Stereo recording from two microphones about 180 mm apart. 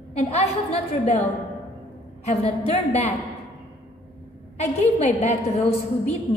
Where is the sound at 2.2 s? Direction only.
35° left (ahead or behind).